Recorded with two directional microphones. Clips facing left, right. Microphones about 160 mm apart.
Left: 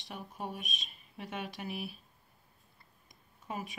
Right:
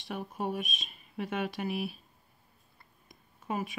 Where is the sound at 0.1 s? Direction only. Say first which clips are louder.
Right 7 dB; 65° right (ahead or behind).